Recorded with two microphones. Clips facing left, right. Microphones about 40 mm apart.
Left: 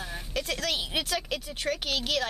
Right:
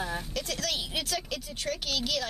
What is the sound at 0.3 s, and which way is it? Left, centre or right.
A child's voice, left.